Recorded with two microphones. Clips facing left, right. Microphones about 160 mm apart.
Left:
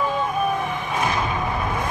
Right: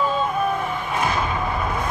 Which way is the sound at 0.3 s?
15° left (ahead or behind).